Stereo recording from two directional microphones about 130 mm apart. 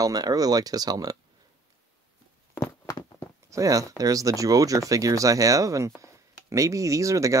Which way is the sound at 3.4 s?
25° right (ahead or behind).